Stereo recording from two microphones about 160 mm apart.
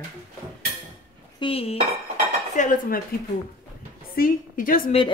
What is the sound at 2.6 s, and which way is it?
Dishes, 50° left (ahead or behind).